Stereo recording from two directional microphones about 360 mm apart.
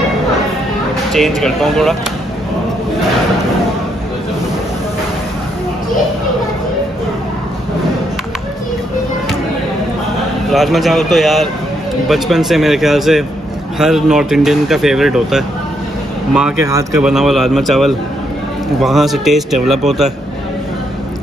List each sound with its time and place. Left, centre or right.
1.1 s speech: centre
10.5 s speech: centre